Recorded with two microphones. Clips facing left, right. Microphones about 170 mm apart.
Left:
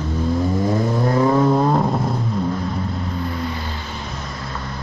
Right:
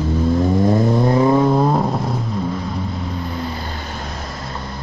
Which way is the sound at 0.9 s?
15° right (ahead or behind).